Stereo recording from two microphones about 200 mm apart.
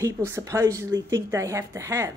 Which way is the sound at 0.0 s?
15° right (ahead or behind).